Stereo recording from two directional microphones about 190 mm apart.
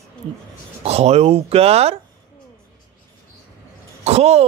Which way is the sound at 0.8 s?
35° right (ahead or behind).